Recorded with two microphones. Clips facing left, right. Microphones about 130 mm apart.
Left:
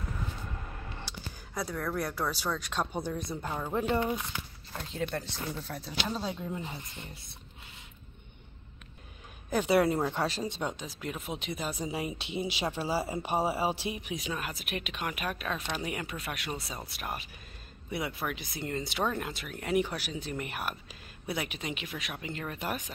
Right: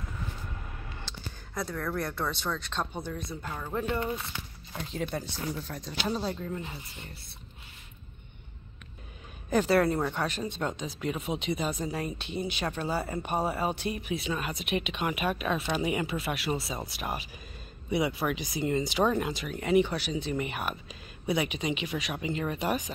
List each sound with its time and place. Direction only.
1.0 s speech: 5° left (ahead or behind)
3.3 s a man's voice: 15° left (ahead or behind)
4.3 s a man's voice: centre (ahead or behind)
6.0 s speech: 5° right (ahead or behind)
9.5 s a man's voice: 5° left (ahead or behind)
9.8 s speech: 20° left (ahead or behind)
10.6 s speech: 5° left (ahead or behind)
11.8 s a man's voice: 15° left (ahead or behind)
13.1 s speech: 25° left (ahead or behind)
13.4 s speech: 10° left (ahead or behind)